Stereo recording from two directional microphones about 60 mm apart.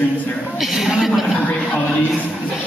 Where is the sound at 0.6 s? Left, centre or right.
Centre.